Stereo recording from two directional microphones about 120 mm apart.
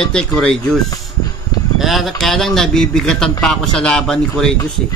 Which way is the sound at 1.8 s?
Centre (ahead or behind).